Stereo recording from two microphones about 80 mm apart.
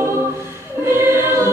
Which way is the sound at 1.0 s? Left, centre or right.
Right.